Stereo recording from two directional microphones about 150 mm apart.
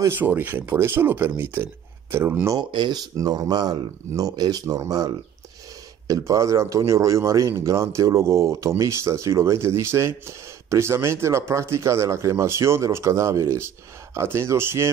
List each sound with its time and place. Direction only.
0.0 s speech: 15° right (ahead or behind)
2.7 s a man's voice: 30° right (ahead or behind)